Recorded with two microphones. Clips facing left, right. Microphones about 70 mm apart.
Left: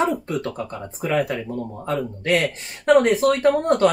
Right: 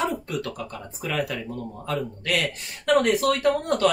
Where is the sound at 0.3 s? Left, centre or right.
Left.